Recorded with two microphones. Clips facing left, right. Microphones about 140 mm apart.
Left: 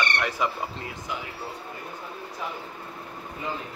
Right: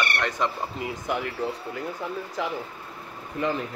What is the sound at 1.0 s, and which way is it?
Speech, 60° right (ahead or behind).